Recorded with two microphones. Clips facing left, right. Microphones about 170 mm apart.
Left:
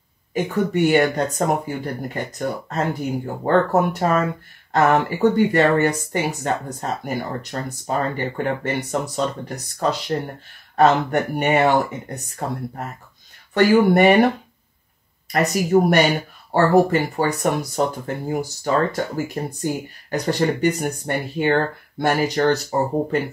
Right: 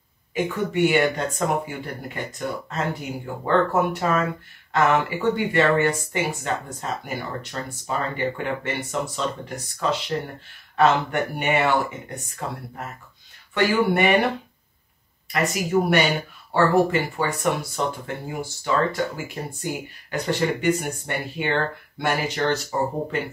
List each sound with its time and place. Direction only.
0.3 s speech: 40° left (ahead or behind)
15.3 s speech: 40° left (ahead or behind)